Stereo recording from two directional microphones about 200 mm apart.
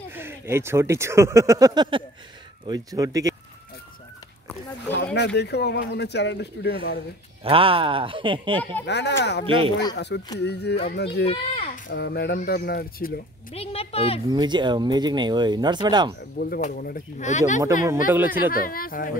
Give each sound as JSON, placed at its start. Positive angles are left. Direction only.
{"t": 0.1, "sound": "speech", "side_deg": -10}
{"t": 5.1, "sound": "speech", "side_deg": 60}
{"t": 7.4, "sound": "speech", "side_deg": -25}
{"t": 8.8, "sound": "speech", "side_deg": 60}
{"t": 11.2, "sound": "speech", "side_deg": 30}
{"t": 11.9, "sound": "speech", "side_deg": 55}
{"t": 13.5, "sound": "a woman's voice", "side_deg": 30}
{"t": 14.3, "sound": "speech", "side_deg": -20}
{"t": 16.3, "sound": "speech", "side_deg": 45}
{"t": 18.1, "sound": "speech", "side_deg": -10}
{"t": 18.5, "sound": "speech", "side_deg": 45}